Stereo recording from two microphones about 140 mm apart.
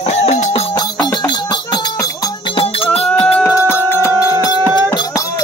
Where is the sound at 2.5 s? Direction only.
40° left (ahead or behind).